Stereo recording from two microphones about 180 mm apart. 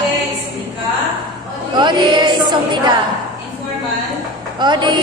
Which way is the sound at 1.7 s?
25° right (ahead or behind).